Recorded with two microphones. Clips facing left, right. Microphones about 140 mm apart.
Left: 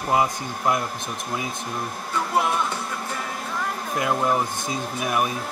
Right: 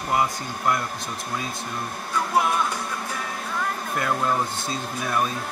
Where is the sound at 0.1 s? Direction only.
20° left (ahead or behind).